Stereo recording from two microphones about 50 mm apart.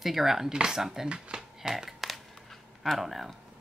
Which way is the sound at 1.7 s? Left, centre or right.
Centre.